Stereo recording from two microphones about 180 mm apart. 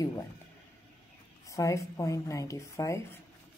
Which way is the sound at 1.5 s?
15° left (ahead or behind).